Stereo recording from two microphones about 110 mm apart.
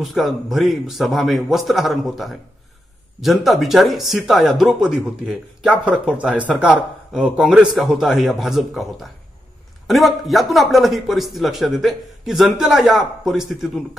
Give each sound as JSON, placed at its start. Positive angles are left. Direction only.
{"t": 0.0, "sound": "a man's voice", "side_deg": 0}